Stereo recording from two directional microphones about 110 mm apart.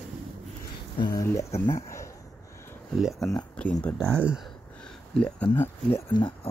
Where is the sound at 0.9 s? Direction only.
45° left (ahead or behind).